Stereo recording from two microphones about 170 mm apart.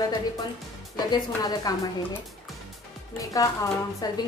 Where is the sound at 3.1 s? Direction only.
20° left (ahead or behind).